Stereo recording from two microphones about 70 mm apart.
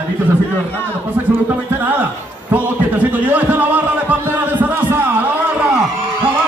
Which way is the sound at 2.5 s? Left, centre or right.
Right.